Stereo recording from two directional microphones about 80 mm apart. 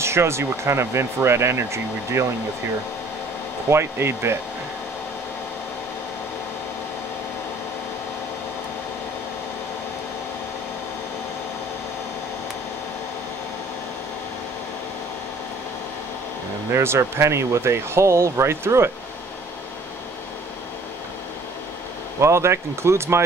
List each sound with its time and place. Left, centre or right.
0.0 s speech: right
3.7 s speech: right
16.7 s speech: right
22.2 s speech: right